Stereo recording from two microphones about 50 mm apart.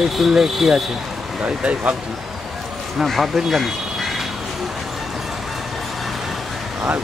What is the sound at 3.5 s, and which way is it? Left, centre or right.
Vehicle, centre.